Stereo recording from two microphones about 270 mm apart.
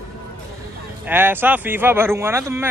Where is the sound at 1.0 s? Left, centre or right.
Centre.